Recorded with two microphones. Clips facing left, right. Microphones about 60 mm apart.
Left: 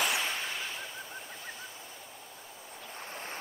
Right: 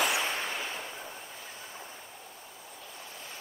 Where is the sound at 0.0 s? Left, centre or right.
Centre.